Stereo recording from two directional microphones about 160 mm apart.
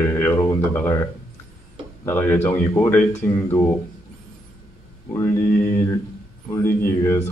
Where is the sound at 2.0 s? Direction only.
15° left (ahead or behind).